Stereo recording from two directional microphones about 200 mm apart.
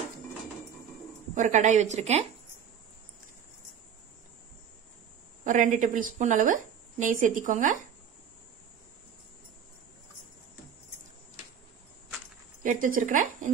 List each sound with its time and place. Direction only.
1.3 s a woman's voice: 35° right (ahead or behind)
5.4 s a woman's voice: 40° right (ahead or behind)
12.8 s a woman's voice: 40° right (ahead or behind)